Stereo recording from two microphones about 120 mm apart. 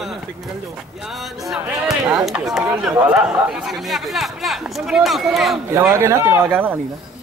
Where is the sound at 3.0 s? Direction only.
15° right (ahead or behind).